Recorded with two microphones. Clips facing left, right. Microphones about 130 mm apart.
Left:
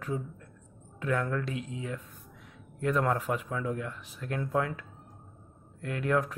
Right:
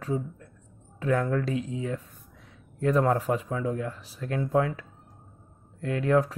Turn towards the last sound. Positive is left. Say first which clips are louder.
# right 5 dB
turn(degrees=-35)  # may be behind; listen again after turning